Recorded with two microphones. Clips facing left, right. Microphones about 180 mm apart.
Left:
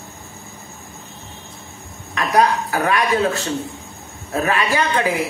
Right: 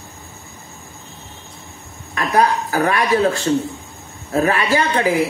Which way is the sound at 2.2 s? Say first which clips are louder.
Even; 35° right (ahead or behind).